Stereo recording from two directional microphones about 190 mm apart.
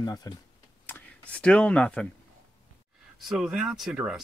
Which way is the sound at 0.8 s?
10° left (ahead or behind).